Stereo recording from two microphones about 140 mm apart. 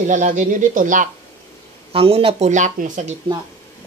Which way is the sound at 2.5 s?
65° right (ahead or behind).